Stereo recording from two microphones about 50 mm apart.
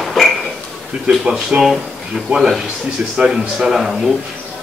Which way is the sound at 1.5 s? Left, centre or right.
Right.